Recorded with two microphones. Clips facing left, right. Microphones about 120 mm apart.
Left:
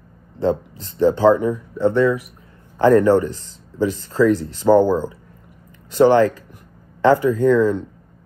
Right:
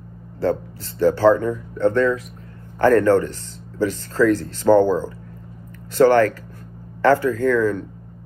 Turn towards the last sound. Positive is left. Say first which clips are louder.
# left 3 dB
turn(degrees=20)  # may be behind; listen again after turning